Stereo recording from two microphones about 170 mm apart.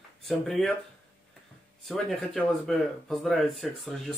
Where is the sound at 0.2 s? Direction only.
Centre (ahead or behind).